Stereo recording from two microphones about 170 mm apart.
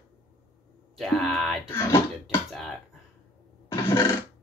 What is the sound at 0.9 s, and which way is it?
Music, centre (ahead or behind).